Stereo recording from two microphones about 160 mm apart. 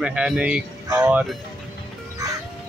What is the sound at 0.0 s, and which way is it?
Speech, 5° right (ahead or behind).